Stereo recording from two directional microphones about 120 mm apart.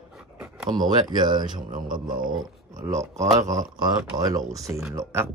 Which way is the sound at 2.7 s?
25° right (ahead or behind).